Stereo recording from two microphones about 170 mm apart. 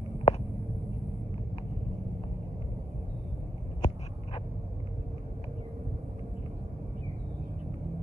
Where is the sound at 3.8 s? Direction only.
45° left (ahead or behind).